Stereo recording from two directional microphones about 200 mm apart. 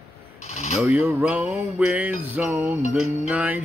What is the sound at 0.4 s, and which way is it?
Mechanisms, 35° left (ahead or behind).